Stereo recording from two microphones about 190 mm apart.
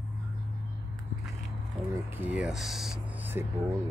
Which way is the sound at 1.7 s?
10° right (ahead or behind).